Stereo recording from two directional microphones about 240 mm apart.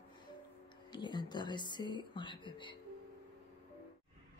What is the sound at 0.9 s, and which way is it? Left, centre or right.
Speech, centre.